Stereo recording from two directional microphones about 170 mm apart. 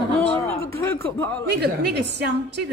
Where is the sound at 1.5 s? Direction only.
80° right.